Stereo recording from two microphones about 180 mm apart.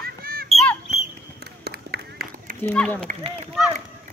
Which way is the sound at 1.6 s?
60° right (ahead or behind).